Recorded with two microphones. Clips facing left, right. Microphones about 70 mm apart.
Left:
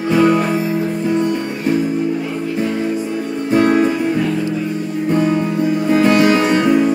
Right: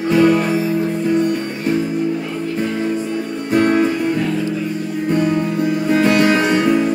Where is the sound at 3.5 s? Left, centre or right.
Centre.